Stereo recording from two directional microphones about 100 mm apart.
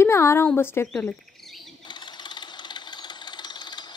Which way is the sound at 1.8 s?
50° left (ahead or behind).